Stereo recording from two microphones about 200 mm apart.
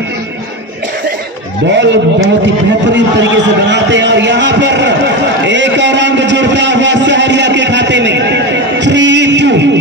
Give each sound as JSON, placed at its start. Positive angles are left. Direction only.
{"t": 1.7, "sound": "a man's voice", "side_deg": -60}